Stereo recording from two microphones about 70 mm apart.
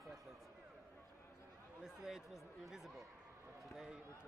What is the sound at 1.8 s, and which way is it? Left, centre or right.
Speech, centre.